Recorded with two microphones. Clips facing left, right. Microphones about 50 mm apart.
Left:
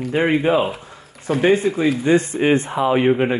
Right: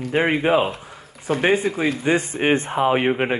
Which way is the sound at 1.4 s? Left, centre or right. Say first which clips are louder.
Left 3 dB; centre.